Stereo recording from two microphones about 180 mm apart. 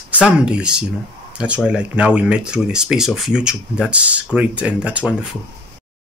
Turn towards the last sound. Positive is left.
turn(degrees=-5)  # may be behind; listen again after turning